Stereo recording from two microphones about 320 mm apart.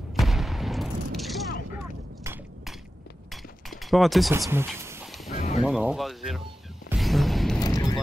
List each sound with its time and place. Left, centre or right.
0.2 s gunshot: centre
3.7 s a sound: centre
5.3 s a sound: left
5.6 s speech: centre
6.9 s music: centre
7.6 s vehicle: centre